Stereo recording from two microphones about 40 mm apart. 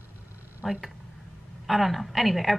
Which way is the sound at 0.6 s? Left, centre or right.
Centre.